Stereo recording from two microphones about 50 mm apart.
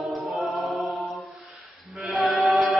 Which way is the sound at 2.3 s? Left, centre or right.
Centre.